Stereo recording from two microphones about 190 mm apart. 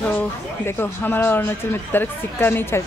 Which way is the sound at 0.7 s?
10° left (ahead or behind).